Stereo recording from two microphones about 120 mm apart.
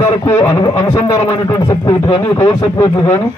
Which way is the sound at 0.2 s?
25° left (ahead or behind).